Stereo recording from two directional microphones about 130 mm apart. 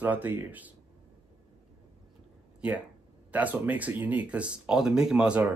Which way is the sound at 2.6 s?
10° right (ahead or behind).